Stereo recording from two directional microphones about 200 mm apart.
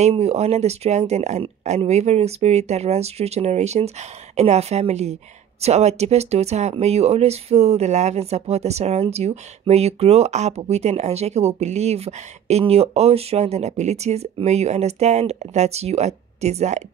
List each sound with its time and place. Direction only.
0.0 s speech: 35° right (ahead or behind)